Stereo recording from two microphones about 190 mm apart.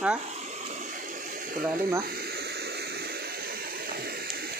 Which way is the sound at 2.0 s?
55° right (ahead or behind).